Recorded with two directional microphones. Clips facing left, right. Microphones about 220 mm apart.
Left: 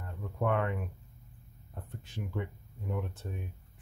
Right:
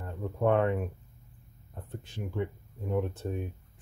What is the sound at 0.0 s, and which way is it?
Speech, 30° right (ahead or behind).